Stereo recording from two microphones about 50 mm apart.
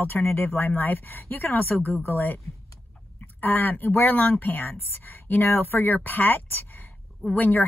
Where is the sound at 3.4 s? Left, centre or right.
Left.